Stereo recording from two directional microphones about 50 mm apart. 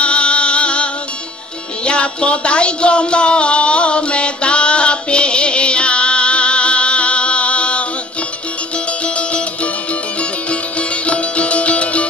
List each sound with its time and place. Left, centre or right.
0.0 s music: left
1.9 s music: left
9.0 s music: left